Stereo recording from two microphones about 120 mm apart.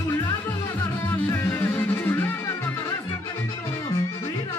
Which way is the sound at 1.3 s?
20° left (ahead or behind).